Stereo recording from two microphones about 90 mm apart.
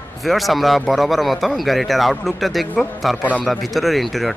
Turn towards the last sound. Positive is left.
turn(degrees=0)  # may be behind; listen again after turning